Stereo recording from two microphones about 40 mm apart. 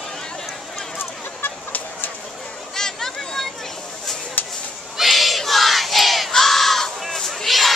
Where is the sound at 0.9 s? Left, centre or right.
Left.